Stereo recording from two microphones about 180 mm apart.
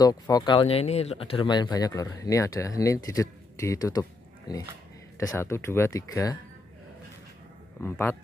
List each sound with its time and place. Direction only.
0.0 s speech: 20° left (ahead or behind)
7.8 s speech: 10° left (ahead or behind)